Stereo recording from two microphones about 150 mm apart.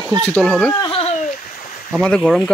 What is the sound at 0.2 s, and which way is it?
Speech, 10° left (ahead or behind).